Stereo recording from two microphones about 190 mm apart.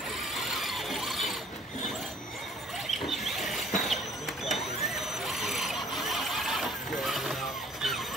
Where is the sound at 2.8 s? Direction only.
Centre (ahead or behind).